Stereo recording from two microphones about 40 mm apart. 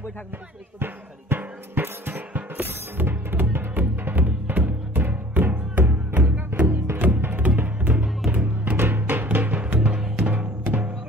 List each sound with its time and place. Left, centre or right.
0.7 s music: right
2.3 s music: right
3.1 s music: right
5.9 s music: right
7.0 s music: right
8.7 s music: right
9.6 s music: right
9.9 s music: centre
10.2 s music: right